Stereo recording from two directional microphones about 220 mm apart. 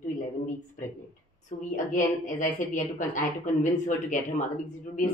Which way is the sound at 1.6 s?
35° left (ahead or behind).